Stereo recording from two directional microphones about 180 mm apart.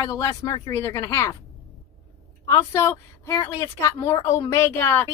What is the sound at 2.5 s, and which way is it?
A woman's voice, 15° left (ahead or behind).